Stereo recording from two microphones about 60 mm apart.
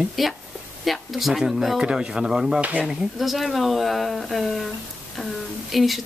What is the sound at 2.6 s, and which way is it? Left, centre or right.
Speech, right.